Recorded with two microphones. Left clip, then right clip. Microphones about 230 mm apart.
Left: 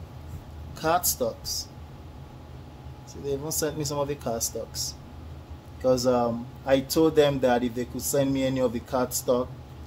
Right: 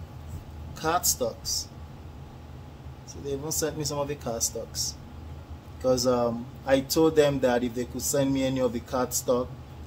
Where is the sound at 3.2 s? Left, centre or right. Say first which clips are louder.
Left 1 dB; left.